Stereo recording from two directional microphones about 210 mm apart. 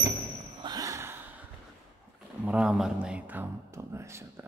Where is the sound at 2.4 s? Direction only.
5° right (ahead or behind).